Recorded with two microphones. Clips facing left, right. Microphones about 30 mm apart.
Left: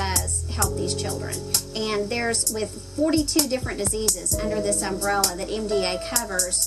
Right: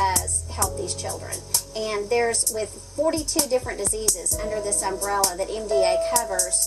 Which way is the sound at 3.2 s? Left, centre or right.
Left.